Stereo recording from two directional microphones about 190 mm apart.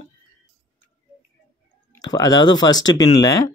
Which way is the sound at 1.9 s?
20° left (ahead or behind).